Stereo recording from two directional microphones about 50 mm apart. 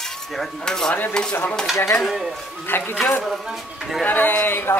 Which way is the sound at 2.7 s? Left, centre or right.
Left.